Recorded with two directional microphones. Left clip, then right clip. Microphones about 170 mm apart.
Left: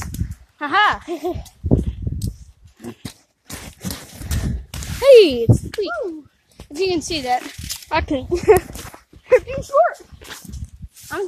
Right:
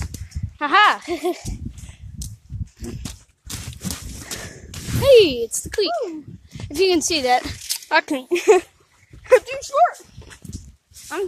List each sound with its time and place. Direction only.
0.6 s speech: 40° right (ahead or behind)
2.8 s a sound: 10° right (ahead or behind)
5.0 s speech: 15° left (ahead or behind)
5.8 s a child's voice: 30° right (ahead or behind)
6.7 s speech: 45° right (ahead or behind)
7.7 s a sound: 25° right (ahead or behind)
8.5 s speech: 90° right
9.3 s a sound: 80° right
11.1 s a child's voice: 25° right (ahead or behind)